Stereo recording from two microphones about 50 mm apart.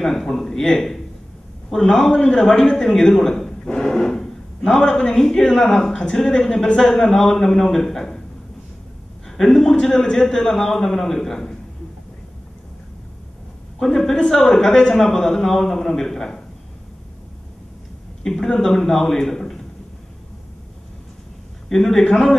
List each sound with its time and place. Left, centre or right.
0.0 s a man's voice: centre
9.4 s a man's voice: centre
13.7 s a man's voice: centre
18.2 s a man's voice: centre
21.6 s a man's voice: centre